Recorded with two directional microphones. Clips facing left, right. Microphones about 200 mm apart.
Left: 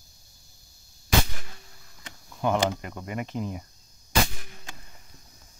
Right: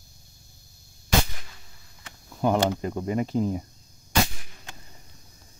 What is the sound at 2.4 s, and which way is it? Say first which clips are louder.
Speech: right 3 dB; 35° right (ahead or behind).